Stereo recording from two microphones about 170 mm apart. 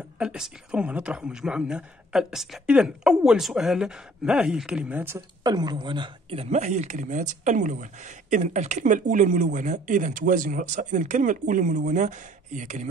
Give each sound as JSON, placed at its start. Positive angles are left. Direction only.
{"t": 0.2, "sound": "speech", "side_deg": -5}